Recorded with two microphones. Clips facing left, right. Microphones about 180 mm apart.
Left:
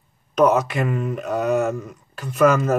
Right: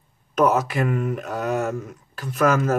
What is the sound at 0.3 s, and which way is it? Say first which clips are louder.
Speech: left 2 dB; 5° right (ahead or behind).